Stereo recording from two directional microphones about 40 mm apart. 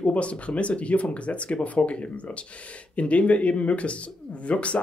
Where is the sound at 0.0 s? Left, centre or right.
Left.